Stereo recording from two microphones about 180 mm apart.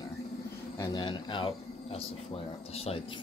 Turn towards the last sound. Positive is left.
turn(degrees=35)  # may be behind; listen again after turning